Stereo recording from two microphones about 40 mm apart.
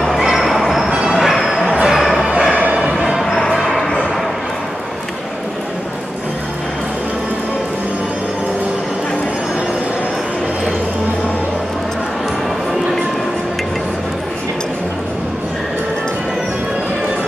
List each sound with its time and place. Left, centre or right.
0.4 s music: centre
1.1 s a sound: centre
2.5 s music: right
3.3 s music: centre